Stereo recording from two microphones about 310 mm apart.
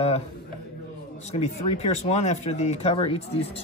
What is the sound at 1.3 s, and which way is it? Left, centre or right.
Speech, centre.